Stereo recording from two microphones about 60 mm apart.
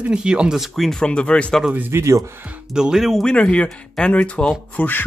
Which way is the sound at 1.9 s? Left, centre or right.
Right.